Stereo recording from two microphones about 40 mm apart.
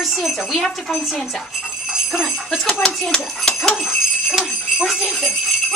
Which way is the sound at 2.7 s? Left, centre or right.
Centre.